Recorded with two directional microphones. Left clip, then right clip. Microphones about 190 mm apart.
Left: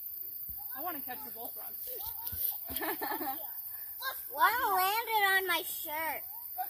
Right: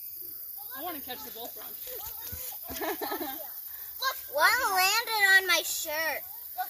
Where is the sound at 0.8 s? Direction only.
30° left (ahead or behind).